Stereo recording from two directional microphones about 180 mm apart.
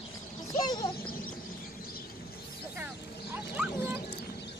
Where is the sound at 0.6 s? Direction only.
25° left (ahead or behind).